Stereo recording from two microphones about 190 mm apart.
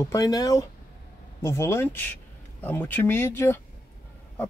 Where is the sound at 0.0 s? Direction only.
20° left (ahead or behind).